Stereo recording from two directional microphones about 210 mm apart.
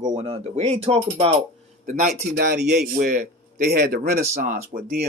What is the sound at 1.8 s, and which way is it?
Speech, 40° right (ahead or behind).